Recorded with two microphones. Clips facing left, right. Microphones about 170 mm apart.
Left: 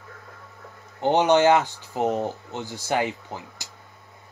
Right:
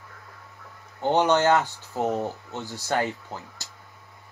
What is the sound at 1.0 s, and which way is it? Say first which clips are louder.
Speech: left 3 dB; 15° left (ahead or behind).